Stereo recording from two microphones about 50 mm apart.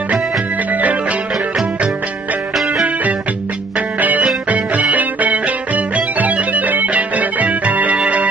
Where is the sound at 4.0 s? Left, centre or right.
Right.